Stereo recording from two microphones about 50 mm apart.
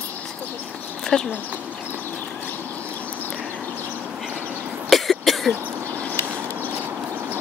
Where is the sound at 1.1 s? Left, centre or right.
Centre.